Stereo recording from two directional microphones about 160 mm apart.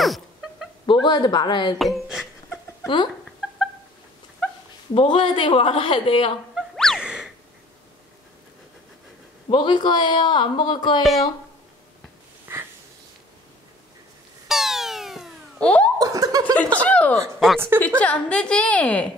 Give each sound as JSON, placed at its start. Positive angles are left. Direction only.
{"t": 0.0, "sound": "cat", "side_deg": 0}
{"t": 0.8, "sound": "a man's voice", "side_deg": 25}
{"t": 1.8, "sound": "a sound", "side_deg": 0}
{"t": 4.9, "sound": "speech", "side_deg": 30}
{"t": 6.5, "sound": "a sound", "side_deg": 0}
{"t": 9.5, "sound": "a man's voice", "side_deg": 30}
{"t": 11.0, "sound": "speech", "side_deg": 0}
{"t": 12.5, "sound": "a sound", "side_deg": -10}
{"t": 14.5, "sound": "music", "side_deg": 0}
{"t": 16.0, "sound": "chuckle", "side_deg": -20}
{"t": 16.5, "sound": "a woman's voice", "side_deg": 10}